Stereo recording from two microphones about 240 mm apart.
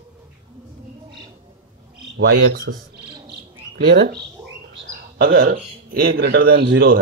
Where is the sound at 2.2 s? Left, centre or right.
Right.